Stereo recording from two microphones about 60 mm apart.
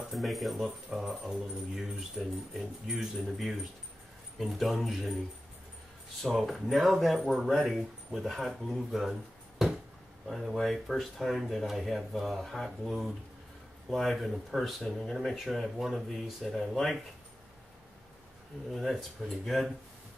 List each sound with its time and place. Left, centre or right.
0.1 s speech: centre
6.2 s speech: centre
10.2 s speech: centre
18.7 s speech: centre